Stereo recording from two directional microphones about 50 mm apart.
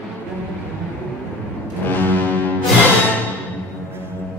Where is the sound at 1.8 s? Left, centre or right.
Left.